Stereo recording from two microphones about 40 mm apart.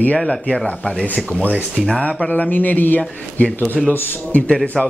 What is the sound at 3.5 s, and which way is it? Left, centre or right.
Speech, left.